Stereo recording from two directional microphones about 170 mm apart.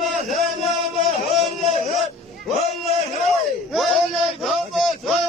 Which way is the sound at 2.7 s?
40° right (ahead or behind).